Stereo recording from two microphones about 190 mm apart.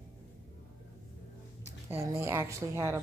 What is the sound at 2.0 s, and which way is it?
Speech, 15° right (ahead or behind).